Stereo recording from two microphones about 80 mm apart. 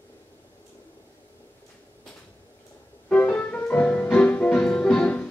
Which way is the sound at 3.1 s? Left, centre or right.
Centre.